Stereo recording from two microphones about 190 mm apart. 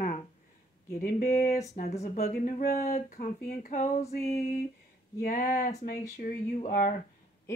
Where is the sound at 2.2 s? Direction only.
50° left (ahead or behind).